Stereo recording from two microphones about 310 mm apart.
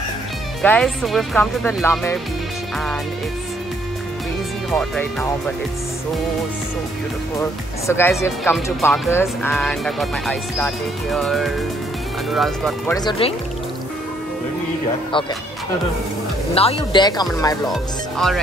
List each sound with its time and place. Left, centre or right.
0.6 s speech: centre
4.6 s speech: centre
7.3 s speech: centre
12.9 s speech: centre
16.5 s speech: centre
17.6 s speech: centre